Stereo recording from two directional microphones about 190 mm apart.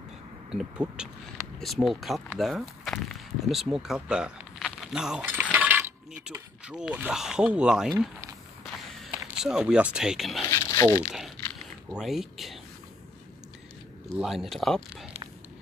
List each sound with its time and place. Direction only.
0.5 s speech: 5° right (ahead or behind)
4.9 s coin: 5° right (ahead or behind)
9.0 s speech: centre (ahead or behind)
10.5 s speech: 15° left (ahead or behind)
11.1 s speech: centre (ahead or behind)
14.0 s speech: 5° right (ahead or behind)